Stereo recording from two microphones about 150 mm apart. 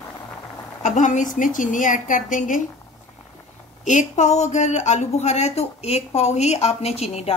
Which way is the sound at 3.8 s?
50° left (ahead or behind).